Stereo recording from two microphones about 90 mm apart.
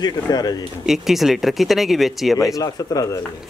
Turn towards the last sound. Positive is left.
turn(degrees=45)  # may be behind; listen again after turning